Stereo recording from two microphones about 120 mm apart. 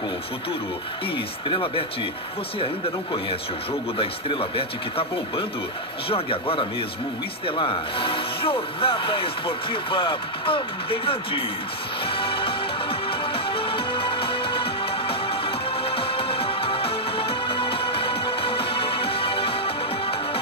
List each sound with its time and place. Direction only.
1.1 s speech: 45° left (ahead or behind)
6.0 s speech: 50° left (ahead or behind)
12.1 s music: 50° left (ahead or behind)